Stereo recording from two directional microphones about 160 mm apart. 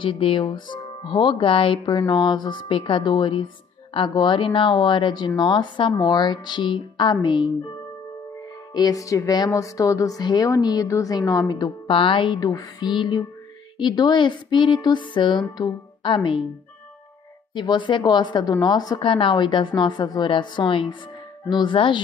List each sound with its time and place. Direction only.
0.0 s a woman's voice: 35° left (ahead or behind)
8.7 s a woman's voice: 25° left (ahead or behind)
17.6 s a woman's voice: 30° left (ahead or behind)